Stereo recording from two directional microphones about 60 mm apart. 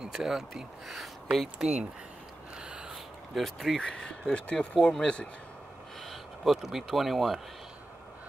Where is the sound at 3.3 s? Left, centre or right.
Centre.